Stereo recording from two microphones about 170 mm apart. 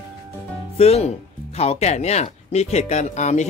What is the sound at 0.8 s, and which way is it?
Speech, 40° left (ahead or behind).